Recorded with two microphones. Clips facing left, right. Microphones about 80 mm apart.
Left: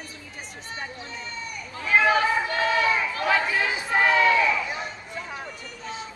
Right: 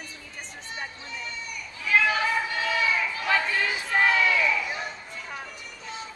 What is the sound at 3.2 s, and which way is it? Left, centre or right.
Crowd, centre.